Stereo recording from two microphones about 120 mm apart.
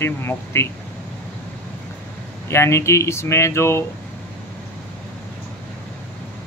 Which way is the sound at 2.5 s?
25° left (ahead or behind).